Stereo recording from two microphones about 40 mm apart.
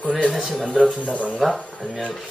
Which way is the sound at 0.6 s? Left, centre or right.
Centre.